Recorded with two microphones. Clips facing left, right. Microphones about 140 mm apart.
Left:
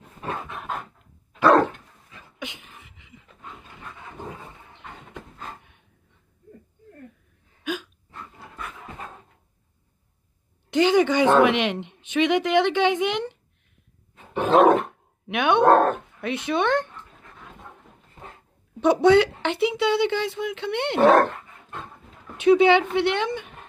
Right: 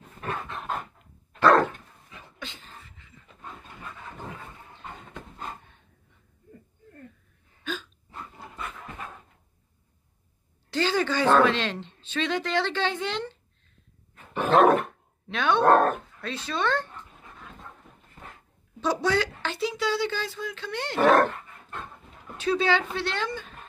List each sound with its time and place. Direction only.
0.2 s dog: 15° left (ahead or behind)
2.3 s a sound: 15° left (ahead or behind)
7.6 s hiccup: 10° left (ahead or behind)
10.7 s speech: 20° left (ahead or behind)
14.1 s dog: 20° left (ahead or behind)
14.8 s speech: 20° left (ahead or behind)
17.6 s a sound: 20° left (ahead or behind)
18.8 s a woman's voice: 20° left (ahead or behind)
22.4 s speech: 20° left (ahead or behind)